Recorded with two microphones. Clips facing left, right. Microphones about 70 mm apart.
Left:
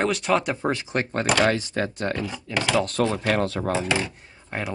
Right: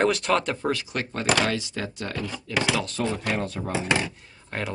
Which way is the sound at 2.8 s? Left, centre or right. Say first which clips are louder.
Left 4 dB; left.